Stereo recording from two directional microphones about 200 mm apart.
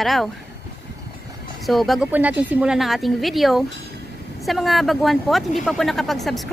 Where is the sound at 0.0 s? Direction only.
Centre (ahead or behind).